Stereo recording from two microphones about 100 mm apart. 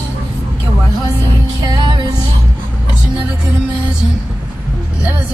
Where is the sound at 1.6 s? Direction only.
45° right (ahead or behind).